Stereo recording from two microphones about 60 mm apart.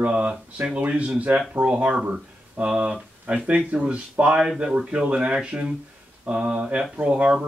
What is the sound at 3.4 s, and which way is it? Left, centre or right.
Speech, right.